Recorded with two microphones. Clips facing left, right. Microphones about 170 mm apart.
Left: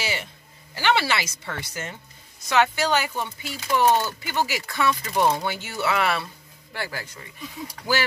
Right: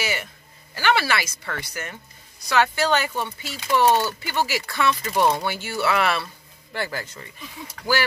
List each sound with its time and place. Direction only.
0.0 s speech: 25° left (ahead or behind); by 7.1 s 10° left (ahead or behind)